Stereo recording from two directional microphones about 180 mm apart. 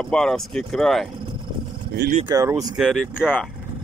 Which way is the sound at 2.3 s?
20° right (ahead or behind).